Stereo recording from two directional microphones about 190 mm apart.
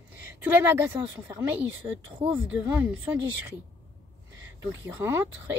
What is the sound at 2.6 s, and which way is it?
Speech, 15° right (ahead or behind).